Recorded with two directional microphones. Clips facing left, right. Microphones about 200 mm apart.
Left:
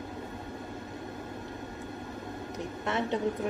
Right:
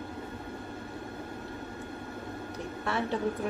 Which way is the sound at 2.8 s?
20° left (ahead or behind).